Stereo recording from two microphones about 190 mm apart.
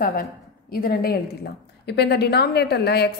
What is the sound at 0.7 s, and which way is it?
A woman's voice, 50° left (ahead or behind).